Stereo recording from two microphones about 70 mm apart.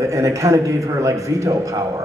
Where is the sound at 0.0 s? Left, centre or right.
Right.